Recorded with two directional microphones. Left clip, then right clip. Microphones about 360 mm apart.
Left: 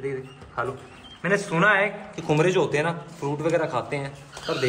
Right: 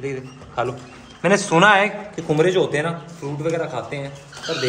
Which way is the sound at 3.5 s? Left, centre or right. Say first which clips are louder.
Left 1 dB; centre.